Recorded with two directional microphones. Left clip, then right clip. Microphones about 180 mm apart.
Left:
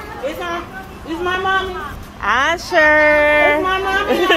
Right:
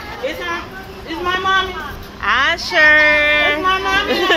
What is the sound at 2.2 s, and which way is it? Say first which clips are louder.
A child's voice: right 1 dB; 20° left (ahead or behind).